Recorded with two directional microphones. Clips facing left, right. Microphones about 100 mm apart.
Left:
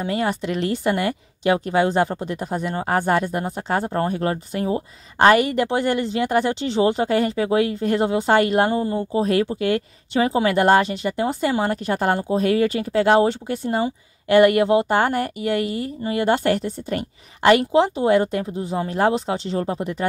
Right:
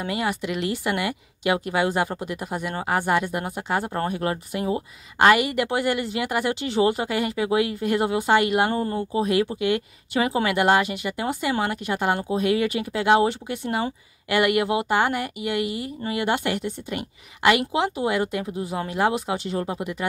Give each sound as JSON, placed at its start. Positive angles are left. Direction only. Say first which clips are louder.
{"t": 0.0, "sound": "speech", "louder": "left 3 dB", "side_deg": 35}